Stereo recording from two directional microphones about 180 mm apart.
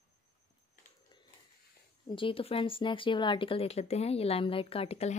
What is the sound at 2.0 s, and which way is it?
Speech, 30° left (ahead or behind).